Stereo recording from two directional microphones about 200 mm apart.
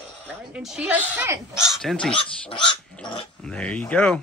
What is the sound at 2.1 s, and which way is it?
Speech, 25° left (ahead or behind).